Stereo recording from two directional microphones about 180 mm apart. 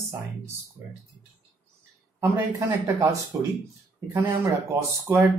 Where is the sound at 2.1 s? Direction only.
15° right (ahead or behind).